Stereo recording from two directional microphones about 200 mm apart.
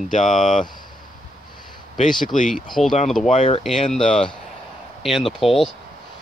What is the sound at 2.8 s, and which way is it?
Speech, 35° left (ahead or behind).